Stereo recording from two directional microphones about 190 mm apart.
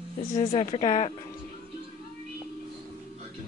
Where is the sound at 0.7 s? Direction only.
35° left (ahead or behind).